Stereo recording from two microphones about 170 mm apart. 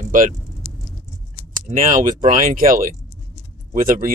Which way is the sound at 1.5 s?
50° right (ahead or behind).